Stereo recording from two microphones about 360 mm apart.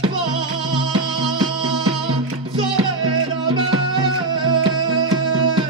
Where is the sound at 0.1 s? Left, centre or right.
Centre.